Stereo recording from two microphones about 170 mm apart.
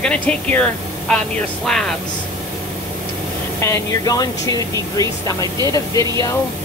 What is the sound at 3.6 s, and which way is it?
Speech, 20° left (ahead or behind).